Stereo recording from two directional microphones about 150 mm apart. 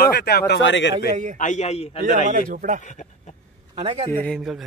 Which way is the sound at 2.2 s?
60° right (ahead or behind).